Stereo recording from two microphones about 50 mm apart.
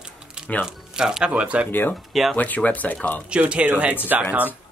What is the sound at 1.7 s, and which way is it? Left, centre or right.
Speech, left.